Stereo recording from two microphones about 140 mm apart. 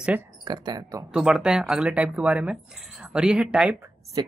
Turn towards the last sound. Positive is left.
turn(degrees=-30)  # may be behind; listen again after turning